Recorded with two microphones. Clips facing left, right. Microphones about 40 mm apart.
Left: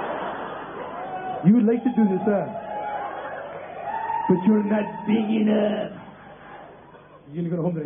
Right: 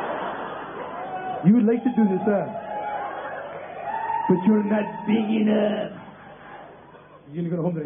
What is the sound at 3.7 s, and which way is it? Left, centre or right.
A man's voice, centre.